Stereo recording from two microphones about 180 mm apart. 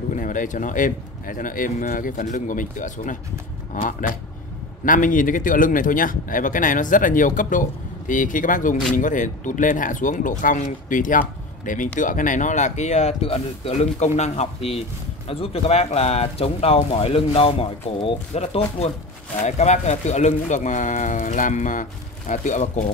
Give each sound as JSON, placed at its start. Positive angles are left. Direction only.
{"t": 0.1, "sound": "speech", "side_deg": 45}